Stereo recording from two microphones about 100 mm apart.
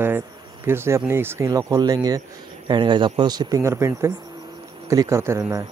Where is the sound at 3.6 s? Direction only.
30° right (ahead or behind).